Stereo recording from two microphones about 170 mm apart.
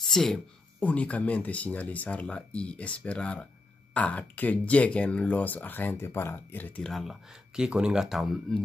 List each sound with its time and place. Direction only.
0.0 s speech: centre (ahead or behind)